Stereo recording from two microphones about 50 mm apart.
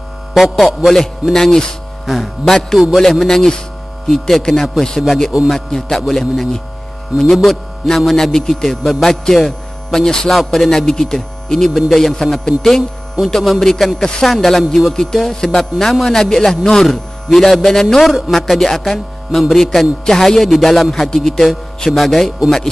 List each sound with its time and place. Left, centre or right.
0.3 s a man's voice: centre
7.1 s speech: right
7.4 s speech: centre
10.4 s a man's voice: centre
10.7 s a man's voice: centre